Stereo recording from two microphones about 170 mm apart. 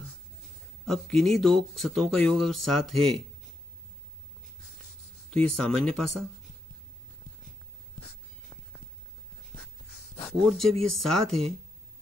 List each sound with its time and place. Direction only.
0.8 s speech: 5° left (ahead or behind)
5.3 s speech: 5° left (ahead or behind)
8.0 s a sound: 25° left (ahead or behind)
10.4 s speech: centre (ahead or behind)